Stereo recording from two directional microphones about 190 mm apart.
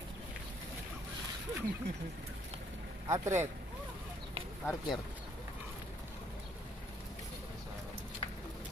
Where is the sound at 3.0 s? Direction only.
15° right (ahead or behind).